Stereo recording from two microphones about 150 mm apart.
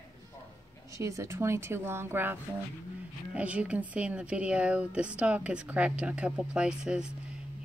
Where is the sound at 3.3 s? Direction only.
10° right (ahead or behind).